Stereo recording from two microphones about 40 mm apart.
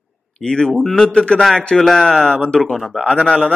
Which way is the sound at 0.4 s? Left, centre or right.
Left.